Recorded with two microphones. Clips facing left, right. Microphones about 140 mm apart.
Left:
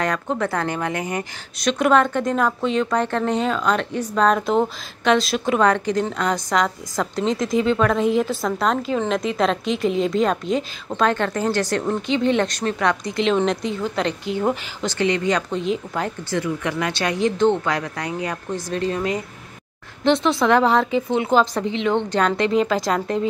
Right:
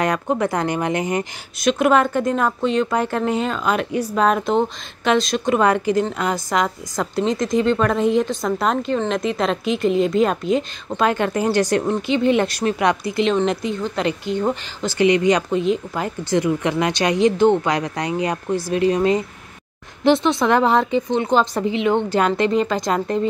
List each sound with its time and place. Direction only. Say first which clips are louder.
0.0 s speech: right 3 dB; 15° right (ahead or behind)
1.6 s a woman's voice: right 1 dB; 5° right (ahead or behind)
5.6 s a woman's voice: right 1 dB; 5° right (ahead or behind)
11.9 s a woman's voice: right 2 dB; 5° right (ahead or behind)
14.9 s speech: right 5 dB; 15° right (ahead or behind)
15.6 s a woman's voice: right 2 dB; centre (ahead or behind)
16.3 s speech: right 9 dB; 20° right (ahead or behind)
20.0 s a woman's voice: right 2 dB; centre (ahead or behind)